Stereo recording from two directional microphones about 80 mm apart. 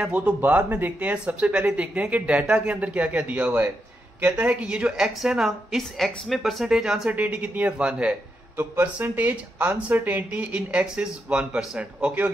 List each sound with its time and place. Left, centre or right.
0.0 s speech: centre
7.1 s a woman's voice: centre